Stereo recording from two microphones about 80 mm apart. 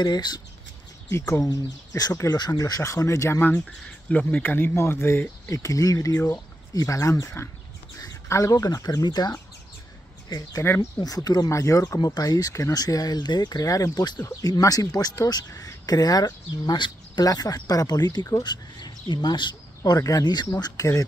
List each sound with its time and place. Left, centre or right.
0.0 s speech: left
1.1 s speech: left
1.4 s speech: left
2.6 s speech: left
4.1 s speech: centre; by 5.6 s left
5.6 s speech: left
6.1 s speech: left
6.7 s speech: left
8.3 s speech: left
11.0 s speech: left
11.5 s speech: left
12.0 s speech: left
17.2 s speech: left
19.8 s speech: left